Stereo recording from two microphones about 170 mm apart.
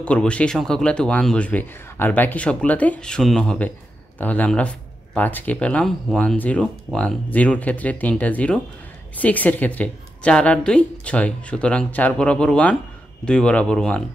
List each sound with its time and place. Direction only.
0.0 s speech: 5° left (ahead or behind)